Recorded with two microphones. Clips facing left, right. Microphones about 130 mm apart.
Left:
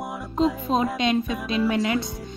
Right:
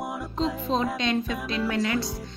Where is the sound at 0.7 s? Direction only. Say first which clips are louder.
Left 3 dB; 10° left (ahead or behind).